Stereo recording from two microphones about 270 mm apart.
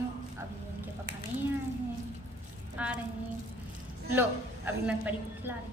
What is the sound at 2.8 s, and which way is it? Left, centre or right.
Speech, centre.